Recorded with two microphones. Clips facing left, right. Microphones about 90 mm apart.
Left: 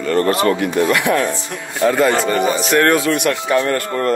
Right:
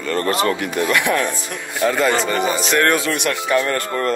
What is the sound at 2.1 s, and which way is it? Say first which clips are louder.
Speech: left 2 dB; 20° right (ahead or behind).